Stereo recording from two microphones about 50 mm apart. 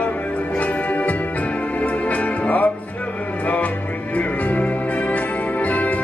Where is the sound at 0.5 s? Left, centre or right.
Left.